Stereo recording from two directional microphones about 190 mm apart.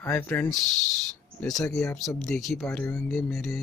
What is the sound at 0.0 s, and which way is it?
Speech, 10° left (ahead or behind).